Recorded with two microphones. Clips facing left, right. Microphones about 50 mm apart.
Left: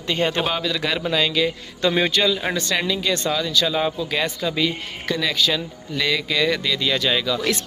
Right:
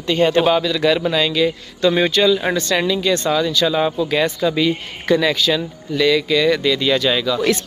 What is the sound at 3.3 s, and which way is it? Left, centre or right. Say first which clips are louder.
Speech: right 4 dB; centre.